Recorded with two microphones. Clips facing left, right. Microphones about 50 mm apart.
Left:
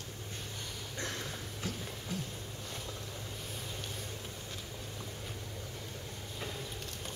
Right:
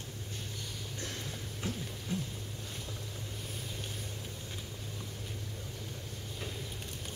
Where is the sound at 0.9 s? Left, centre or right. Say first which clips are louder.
Left 4 dB; left.